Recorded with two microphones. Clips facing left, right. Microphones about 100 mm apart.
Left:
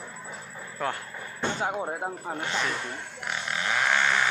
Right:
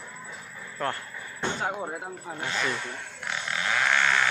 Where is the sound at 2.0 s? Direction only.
35° left (ahead or behind).